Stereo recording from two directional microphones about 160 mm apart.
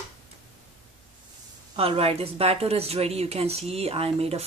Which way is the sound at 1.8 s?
40° right (ahead or behind).